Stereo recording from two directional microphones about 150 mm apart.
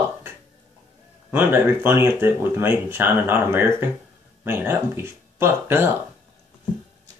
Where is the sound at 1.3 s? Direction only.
15° right (ahead or behind).